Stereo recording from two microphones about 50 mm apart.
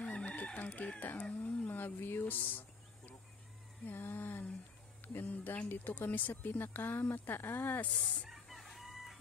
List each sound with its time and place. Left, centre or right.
0.0 s chicken: left
1.3 s a sound: left
1.7 s speech: left
3.8 s speech: left
8.3 s chicken: centre